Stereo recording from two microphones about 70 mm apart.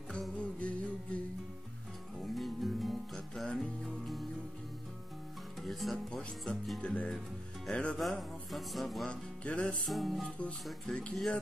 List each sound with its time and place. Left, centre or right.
0.4 s music: centre
2.3 s music: centre
5.7 s speech: centre
8.0 s speech: centre
9.1 s music: centre
9.8 s speech: centre
10.6 s speech: centre